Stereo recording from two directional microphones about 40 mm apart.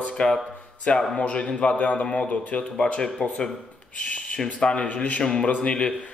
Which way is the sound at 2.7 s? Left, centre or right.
Left.